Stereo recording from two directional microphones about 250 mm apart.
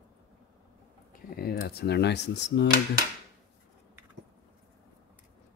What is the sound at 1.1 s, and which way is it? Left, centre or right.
Speech, left.